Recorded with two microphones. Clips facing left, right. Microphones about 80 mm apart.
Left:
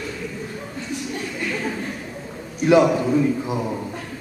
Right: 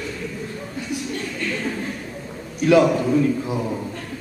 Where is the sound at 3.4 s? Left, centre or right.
Left.